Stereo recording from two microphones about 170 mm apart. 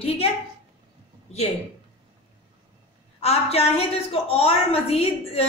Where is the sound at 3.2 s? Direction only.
40° left (ahead or behind).